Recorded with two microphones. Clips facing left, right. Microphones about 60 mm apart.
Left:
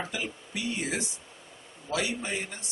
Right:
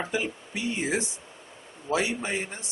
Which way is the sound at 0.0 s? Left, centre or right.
Right.